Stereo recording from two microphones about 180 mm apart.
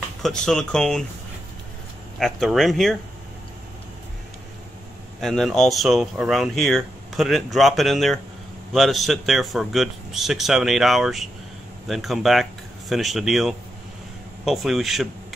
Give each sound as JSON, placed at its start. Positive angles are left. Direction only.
{"t": 0.2, "sound": "speech", "side_deg": 5}
{"t": 2.1, "sound": "speech", "side_deg": 0}
{"t": 5.2, "sound": "speech", "side_deg": 0}